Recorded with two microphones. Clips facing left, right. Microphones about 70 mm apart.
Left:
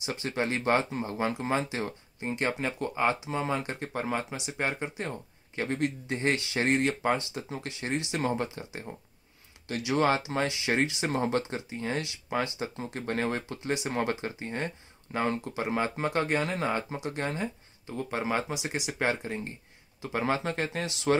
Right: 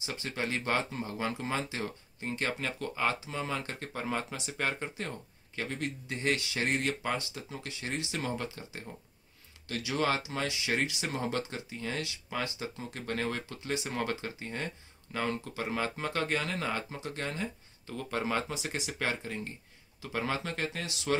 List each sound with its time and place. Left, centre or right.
0.0 s speech: left